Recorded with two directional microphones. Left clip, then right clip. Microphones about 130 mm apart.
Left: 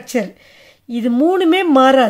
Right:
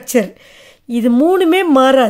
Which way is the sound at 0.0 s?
45° right (ahead or behind).